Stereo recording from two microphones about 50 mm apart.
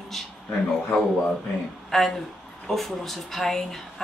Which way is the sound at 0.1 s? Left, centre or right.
Centre.